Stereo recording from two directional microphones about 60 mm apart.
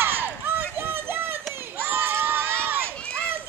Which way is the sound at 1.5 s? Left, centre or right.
Right.